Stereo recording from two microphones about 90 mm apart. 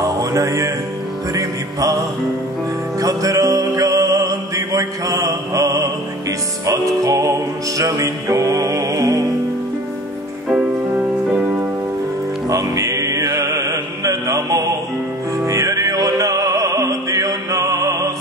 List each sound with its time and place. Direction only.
0.0 s music: 40° right (ahead or behind)
3.0 s music: 40° right (ahead or behind)
10.5 s music: 10° right (ahead or behind)
12.4 s music: 40° right (ahead or behind)